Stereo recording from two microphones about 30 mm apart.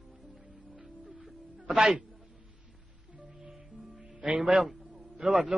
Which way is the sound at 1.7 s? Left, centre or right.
Centre.